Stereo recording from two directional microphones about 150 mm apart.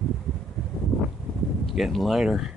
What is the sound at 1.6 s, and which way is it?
Speech, centre (ahead or behind).